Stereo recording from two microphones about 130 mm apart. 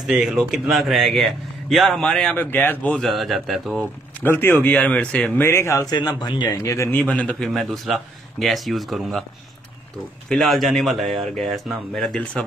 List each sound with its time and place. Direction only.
0.0 s a man's voice: 5° right (ahead or behind)
2.3 s a man's voice: 15° left (ahead or behind); by 3.8 s centre (ahead or behind)
4.2 s speech: 15° left (ahead or behind)
5.9 s a man's voice: 35° left (ahead or behind); by 9.2 s centre (ahead or behind)
10.3 s a man's voice: centre (ahead or behind)